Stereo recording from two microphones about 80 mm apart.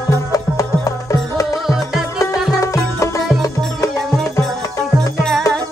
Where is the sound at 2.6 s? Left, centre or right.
Left.